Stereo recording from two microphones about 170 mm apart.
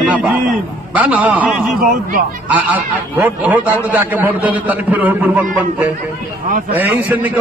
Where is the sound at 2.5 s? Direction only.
10° right (ahead or behind).